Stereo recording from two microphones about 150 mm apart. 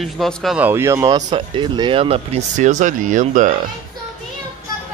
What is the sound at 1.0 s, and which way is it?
Speech, 30° right (ahead or behind).